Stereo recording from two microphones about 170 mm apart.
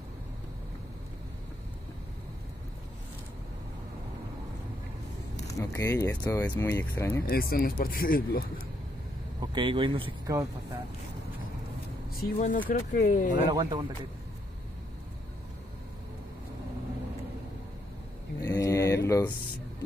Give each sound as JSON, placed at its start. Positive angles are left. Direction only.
{"t": 5.6, "sound": "speech", "side_deg": 15}
{"t": 7.2, "sound": "speech", "side_deg": 60}
{"t": 9.4, "sound": "speech", "side_deg": -25}
{"t": 10.2, "sound": "speech", "side_deg": -20}
{"t": 12.2, "sound": "speech", "side_deg": 50}
{"t": 13.5, "sound": "speech", "side_deg": -25}
{"t": 18.4, "sound": "a sound", "side_deg": 20}
{"t": 19.0, "sound": "speech", "side_deg": 15}